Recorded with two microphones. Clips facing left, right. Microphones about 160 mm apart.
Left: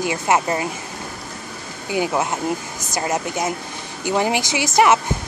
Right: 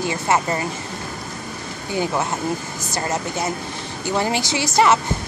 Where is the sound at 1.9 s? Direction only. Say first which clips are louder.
Left 2 dB; 15° left (ahead or behind).